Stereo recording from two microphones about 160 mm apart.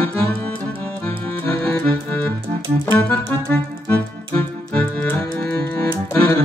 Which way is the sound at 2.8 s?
10° left (ahead or behind).